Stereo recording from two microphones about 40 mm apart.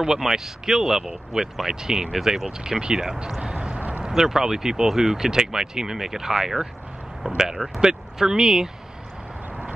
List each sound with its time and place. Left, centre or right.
0.0 s speech: centre
3.3 s vehicle: right
4.1 s speech: centre